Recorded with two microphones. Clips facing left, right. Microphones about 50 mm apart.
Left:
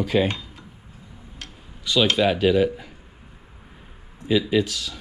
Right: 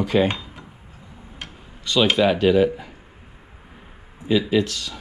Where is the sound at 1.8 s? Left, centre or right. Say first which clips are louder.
Right 1 dB; centre.